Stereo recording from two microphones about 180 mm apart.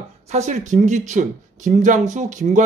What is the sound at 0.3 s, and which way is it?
Speech, 40° right (ahead or behind).